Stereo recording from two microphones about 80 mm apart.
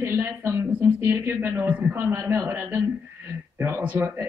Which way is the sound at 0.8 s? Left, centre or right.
Right.